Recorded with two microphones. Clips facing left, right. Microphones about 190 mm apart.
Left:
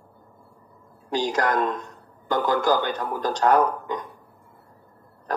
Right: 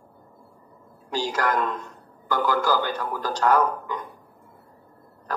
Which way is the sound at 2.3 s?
20° left (ahead or behind).